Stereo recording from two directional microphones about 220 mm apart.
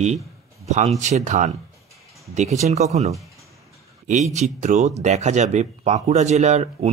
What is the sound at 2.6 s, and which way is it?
Speech, 30° right (ahead or behind).